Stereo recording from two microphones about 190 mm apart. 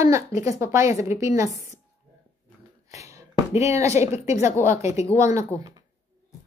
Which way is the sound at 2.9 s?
15° right (ahead or behind).